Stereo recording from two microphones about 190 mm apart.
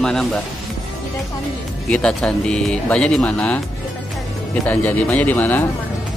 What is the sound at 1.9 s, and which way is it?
Speech, 5° left (ahead or behind).